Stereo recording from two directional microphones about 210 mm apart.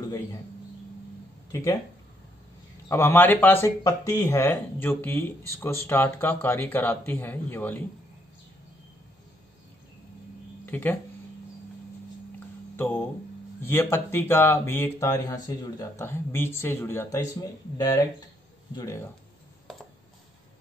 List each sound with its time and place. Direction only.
1.5 s speech: 15° left (ahead or behind)
2.9 s speech: 10° left (ahead or behind)
10.6 s speech: 10° left (ahead or behind)
12.7 s speech: 10° left (ahead or behind)